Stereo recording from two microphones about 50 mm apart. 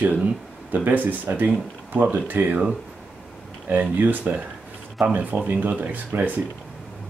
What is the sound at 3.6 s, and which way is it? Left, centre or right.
Speech, right.